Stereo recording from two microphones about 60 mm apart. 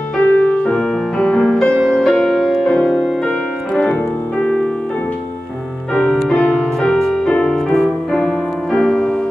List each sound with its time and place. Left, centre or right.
0.2 s music: left
1.2 s music: centre
3.9 s piano: centre
5.9 s music: centre